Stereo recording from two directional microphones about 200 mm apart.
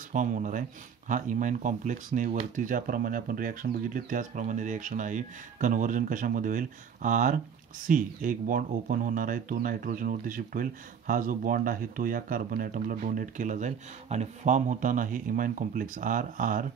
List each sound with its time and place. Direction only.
0.1 s speech: 40° right (ahead or behind)